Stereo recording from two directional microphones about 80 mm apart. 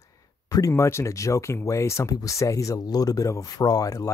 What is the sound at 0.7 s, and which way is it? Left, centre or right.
Speech, left.